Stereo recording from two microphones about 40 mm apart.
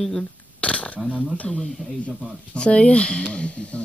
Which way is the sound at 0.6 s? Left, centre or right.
Left.